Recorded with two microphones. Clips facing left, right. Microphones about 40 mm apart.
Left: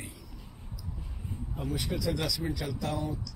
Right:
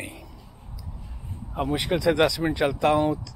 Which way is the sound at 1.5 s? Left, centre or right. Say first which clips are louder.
Right 9 dB; right.